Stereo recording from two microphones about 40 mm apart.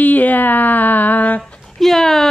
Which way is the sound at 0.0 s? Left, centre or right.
Left.